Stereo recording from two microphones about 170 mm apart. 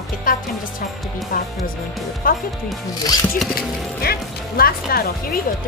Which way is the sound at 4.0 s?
60° left (ahead or behind).